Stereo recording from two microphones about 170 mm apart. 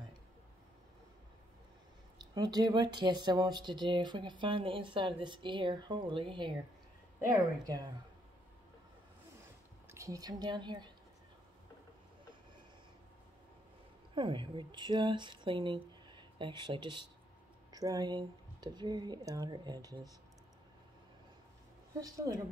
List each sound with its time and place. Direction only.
2.1 s speech: 25° right (ahead or behind)
9.8 s a woman's voice: 20° right (ahead or behind)
14.1 s speech: 30° right (ahead or behind)
22.0 s speech: 20° right (ahead or behind)